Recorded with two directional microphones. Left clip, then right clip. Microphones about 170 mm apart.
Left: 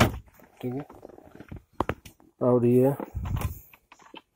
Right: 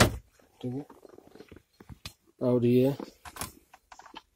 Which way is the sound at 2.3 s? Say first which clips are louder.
Left 4 dB; 15° right (ahead or behind).